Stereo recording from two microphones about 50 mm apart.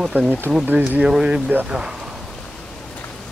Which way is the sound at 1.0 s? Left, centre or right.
Centre.